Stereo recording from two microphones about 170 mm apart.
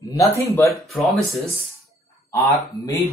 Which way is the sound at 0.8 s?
Centre (ahead or behind).